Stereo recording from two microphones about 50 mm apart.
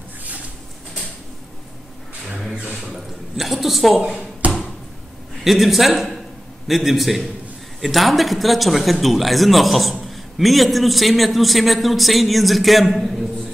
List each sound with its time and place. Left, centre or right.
2.2 s vehicle: centre
2.7 s a man's voice: centre
4.1 s a sound: right
5.4 s a man's voice: centre